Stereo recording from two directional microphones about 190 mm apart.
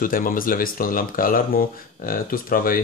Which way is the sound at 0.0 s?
45° left (ahead or behind).